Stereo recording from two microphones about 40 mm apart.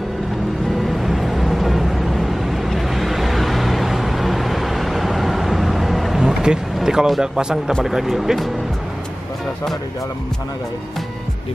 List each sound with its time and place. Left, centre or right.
0.8 s vehicle: centre
6.2 s vehicle: centre
7.2 s speech: centre